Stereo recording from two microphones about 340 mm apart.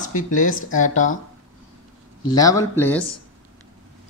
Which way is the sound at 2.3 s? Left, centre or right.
Centre.